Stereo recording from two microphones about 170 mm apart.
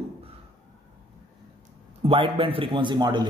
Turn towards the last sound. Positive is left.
turn(degrees=-25)  # may be behind; listen again after turning